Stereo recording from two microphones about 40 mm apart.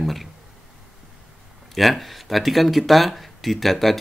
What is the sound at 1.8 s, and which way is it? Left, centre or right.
Speech, centre.